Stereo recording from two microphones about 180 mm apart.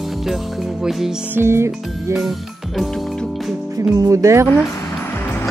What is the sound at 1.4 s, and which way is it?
Music, 15° right (ahead or behind).